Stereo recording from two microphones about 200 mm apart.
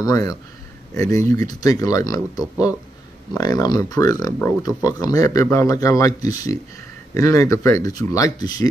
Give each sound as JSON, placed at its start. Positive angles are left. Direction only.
{"t": 0.0, "sound": "speech", "side_deg": 15}